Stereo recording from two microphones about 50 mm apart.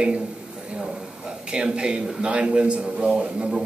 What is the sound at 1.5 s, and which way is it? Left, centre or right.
Speech, centre.